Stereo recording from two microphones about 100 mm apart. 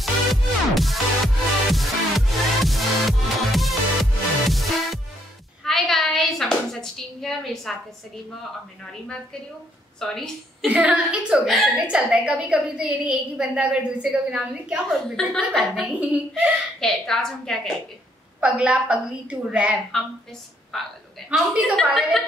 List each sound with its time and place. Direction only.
0.0 s music: centre (ahead or behind)
5.6 s a woman's voice: 5° left (ahead or behind)
9.0 s a woman's voice: 10° left (ahead or behind)
10.6 s a woman's voice: 15° right (ahead or behind)
11.7 s a woman's voice: 10° right (ahead or behind)
14.9 s a woman's voice: 5° left (ahead or behind)
15.8 s a woman's voice: 10° right (ahead or behind)
16.8 s a woman's voice: 5° left (ahead or behind)
18.4 s a woman's voice: 10° right (ahead or behind)
20.7 s a woman's voice: centre (ahead or behind)
21.3 s a woman's voice: 10° right (ahead or behind)